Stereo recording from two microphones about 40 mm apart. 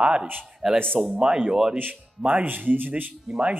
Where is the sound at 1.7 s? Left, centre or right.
Right.